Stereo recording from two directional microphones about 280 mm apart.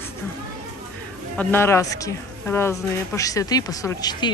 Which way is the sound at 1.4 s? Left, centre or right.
Centre.